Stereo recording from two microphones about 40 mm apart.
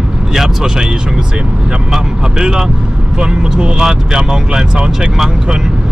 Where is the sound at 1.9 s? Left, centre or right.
Centre.